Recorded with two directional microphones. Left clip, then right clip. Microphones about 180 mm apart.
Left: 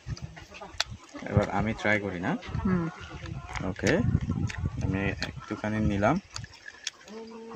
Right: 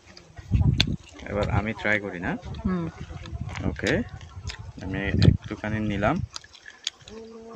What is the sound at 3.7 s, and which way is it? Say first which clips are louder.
Speech: right 1 dB; 5° right (ahead or behind).